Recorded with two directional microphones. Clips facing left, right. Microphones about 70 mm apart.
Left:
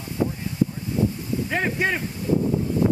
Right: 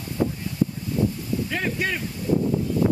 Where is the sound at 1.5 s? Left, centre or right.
Left.